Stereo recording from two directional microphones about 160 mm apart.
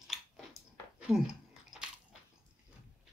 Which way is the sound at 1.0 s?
5° right (ahead or behind).